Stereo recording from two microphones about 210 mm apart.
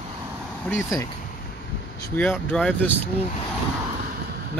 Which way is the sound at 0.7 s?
15° left (ahead or behind).